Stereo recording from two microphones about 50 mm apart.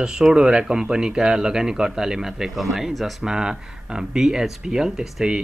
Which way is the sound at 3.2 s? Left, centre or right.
Centre.